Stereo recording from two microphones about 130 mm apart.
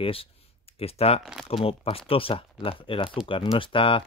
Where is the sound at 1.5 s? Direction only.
45° left (ahead or behind).